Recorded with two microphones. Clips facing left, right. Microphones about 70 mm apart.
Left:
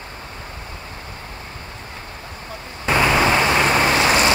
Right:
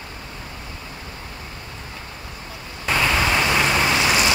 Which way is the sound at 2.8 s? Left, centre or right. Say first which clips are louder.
Left 4 dB; left.